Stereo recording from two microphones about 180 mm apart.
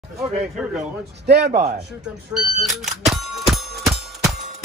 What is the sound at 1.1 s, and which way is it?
Speech, 70° right (ahead or behind).